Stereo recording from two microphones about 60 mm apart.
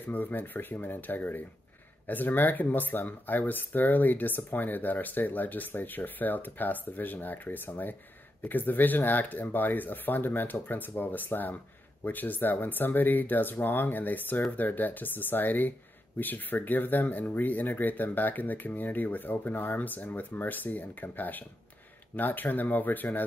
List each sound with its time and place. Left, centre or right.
0.0 s speech: left